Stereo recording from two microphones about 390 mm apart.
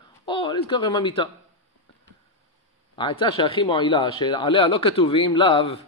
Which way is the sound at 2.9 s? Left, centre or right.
Centre.